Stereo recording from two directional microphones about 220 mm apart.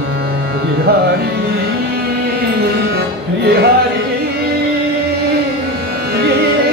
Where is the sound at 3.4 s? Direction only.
45° right (ahead or behind).